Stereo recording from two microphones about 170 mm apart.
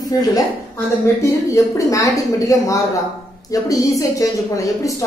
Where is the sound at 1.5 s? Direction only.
20° left (ahead or behind).